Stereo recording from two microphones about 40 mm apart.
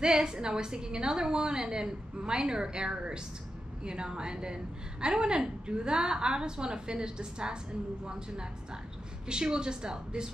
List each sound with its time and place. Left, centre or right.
0.0 s a woman's voice: centre